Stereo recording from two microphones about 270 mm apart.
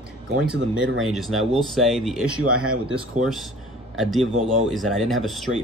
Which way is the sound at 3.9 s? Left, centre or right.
Centre.